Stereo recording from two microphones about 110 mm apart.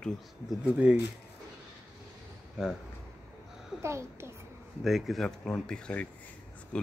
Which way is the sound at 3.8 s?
25° right (ahead or behind).